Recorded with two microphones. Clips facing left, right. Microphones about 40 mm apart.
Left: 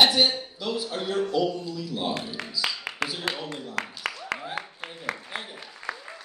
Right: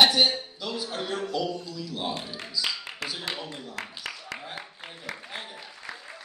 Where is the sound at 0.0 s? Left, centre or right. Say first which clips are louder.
Even; centre.